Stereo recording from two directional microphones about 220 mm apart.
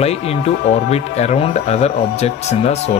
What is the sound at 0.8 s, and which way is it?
Speech, 30° left (ahead or behind).